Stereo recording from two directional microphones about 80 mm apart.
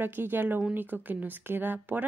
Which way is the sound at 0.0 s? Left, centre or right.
Right.